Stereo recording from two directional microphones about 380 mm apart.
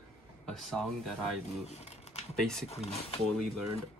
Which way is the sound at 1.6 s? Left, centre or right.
Centre.